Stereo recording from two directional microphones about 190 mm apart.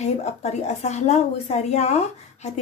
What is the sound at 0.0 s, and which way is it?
A woman's voice, 35° left (ahead or behind).